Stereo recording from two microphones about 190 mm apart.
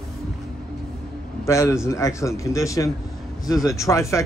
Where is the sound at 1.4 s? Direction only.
15° left (ahead or behind).